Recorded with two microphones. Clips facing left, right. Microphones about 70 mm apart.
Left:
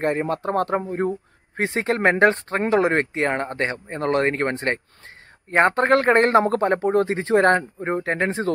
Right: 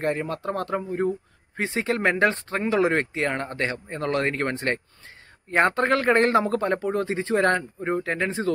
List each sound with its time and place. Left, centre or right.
0.0 s speech: left